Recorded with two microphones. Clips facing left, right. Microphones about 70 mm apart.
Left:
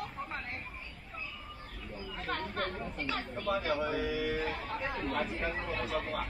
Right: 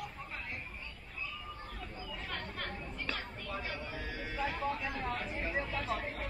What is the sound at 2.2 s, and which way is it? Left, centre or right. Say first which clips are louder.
Chatter: left 8 dB; left.